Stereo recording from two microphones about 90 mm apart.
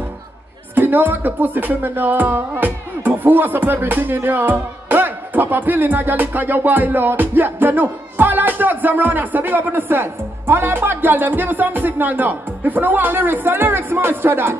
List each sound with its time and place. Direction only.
0.7 s music: 20° right (ahead or behind)